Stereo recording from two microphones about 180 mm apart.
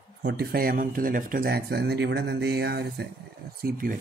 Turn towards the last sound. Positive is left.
turn(degrees=-55)  # may be behind; listen again after turning